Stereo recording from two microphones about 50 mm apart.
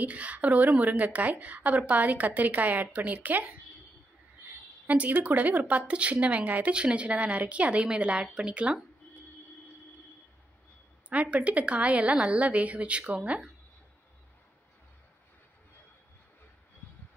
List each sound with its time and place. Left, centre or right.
0.0 s a woman's voice: right
4.8 s a woman's voice: right
11.1 s a woman's voice: right